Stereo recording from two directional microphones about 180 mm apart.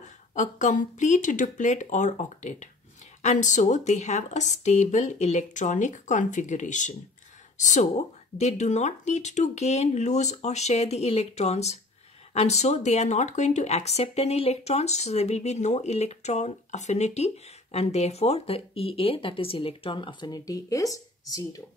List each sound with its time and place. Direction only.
0.3 s speech: 45° left (ahead or behind); by 21.6 s 20° left (ahead or behind)